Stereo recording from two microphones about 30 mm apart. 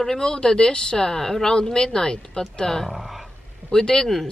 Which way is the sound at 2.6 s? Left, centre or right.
Centre.